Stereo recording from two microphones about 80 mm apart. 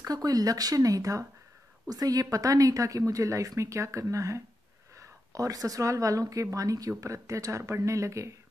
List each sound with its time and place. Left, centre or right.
0.0 s a woman's voice: right